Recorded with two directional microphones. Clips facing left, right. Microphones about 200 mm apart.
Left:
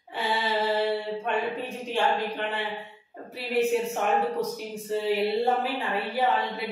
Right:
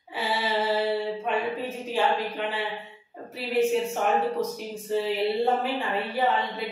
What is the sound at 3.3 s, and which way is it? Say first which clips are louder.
Speech: right 1 dB; centre (ahead or behind).